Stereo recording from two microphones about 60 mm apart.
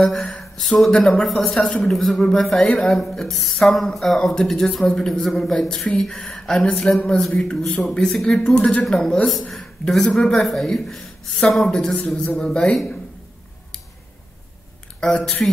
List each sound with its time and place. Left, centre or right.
0.0 s a man's voice: centre
1.9 s a man's voice: centre
5.9 s speech: left
6.1 s a man's voice: centre
15.0 s speech: centre